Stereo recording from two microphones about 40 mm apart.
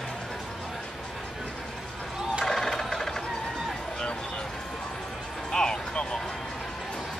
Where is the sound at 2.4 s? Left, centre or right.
Centre.